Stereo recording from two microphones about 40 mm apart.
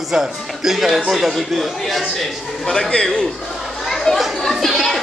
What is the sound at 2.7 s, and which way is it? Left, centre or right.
Speech, centre.